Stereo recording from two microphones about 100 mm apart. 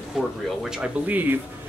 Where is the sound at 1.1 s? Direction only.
15° right (ahead or behind).